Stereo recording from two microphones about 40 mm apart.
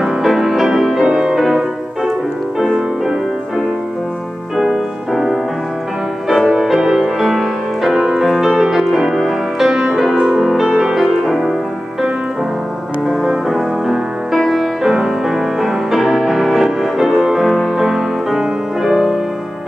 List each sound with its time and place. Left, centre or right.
0.0 s music: centre
2.6 s music: centre
4.6 s music: centre
6.8 s music: centre
13.0 s music: centre